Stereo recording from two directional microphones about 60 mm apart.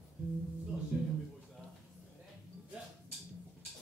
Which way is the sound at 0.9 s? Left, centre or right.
Centre.